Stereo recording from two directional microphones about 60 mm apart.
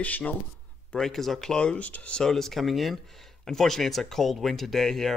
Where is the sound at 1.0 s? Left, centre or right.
Centre; by 2.2 s left.